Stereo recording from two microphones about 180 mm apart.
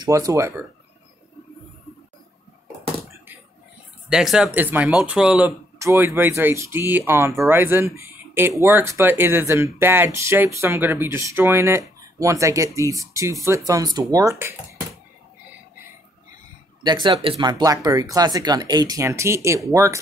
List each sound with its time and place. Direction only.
0.0 s speech: 20° right (ahead or behind)
4.1 s speech: 5° right (ahead or behind)
16.8 s speech: 25° right (ahead or behind)